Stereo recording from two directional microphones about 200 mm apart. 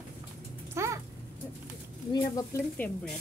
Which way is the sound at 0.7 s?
15° right (ahead or behind).